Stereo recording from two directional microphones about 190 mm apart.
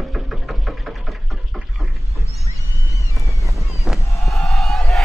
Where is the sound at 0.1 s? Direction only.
Centre (ahead or behind).